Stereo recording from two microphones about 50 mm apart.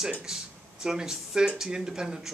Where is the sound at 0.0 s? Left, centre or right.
Centre.